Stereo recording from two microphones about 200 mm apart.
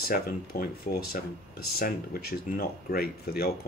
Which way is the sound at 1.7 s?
50° left (ahead or behind).